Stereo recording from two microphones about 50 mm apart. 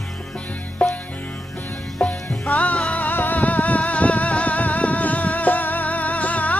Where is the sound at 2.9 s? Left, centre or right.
Left.